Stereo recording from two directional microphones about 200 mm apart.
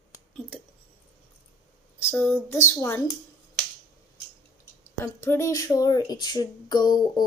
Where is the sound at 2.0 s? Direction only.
10° left (ahead or behind).